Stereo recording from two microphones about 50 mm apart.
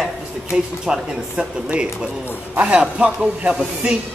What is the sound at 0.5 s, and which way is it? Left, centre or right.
A man's voice, centre.